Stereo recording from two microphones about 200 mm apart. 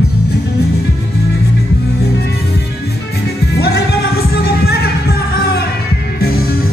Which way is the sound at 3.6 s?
55° left (ahead or behind).